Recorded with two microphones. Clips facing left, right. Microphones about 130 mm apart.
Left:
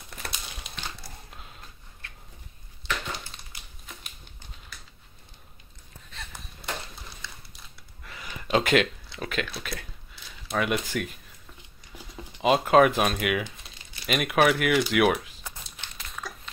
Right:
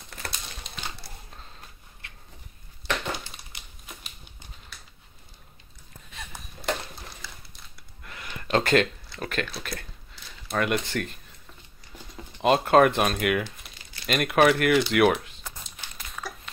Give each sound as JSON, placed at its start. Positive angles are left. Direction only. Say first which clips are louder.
{"t": 0.1, "sound": "crumpling", "louder": "right 1 dB", "side_deg": 5}
{"t": 8.0, "sound": "a sound", "louder": "right 1 dB", "side_deg": 0}
{"t": 10.5, "sound": "speech", "louder": "right 1 dB", "side_deg": 5}
{"t": 15.8, "sound": "crumpling", "louder": "right 1 dB", "side_deg": -5}